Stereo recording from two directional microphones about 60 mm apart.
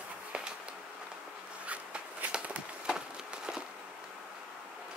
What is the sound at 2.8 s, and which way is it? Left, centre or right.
Wood, centre.